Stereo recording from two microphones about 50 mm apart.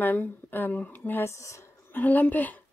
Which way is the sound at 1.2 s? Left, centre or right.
Left.